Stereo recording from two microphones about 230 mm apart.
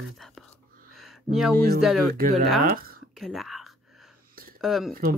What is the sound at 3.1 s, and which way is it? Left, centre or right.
Whispering, centre.